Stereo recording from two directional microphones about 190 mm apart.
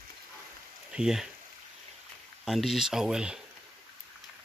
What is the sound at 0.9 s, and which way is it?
Speech, 5° right (ahead or behind).